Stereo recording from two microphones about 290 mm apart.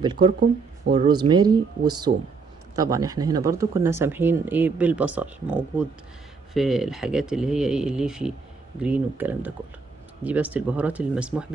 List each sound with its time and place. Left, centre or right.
0.0 s speech: centre
6.5 s speech: centre